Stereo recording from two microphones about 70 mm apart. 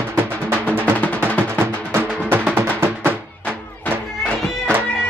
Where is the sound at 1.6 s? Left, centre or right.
Right.